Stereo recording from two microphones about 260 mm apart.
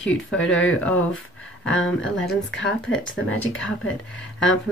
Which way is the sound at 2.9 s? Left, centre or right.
Left.